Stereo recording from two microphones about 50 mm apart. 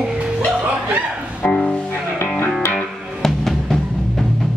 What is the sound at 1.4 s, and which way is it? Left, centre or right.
Music, left.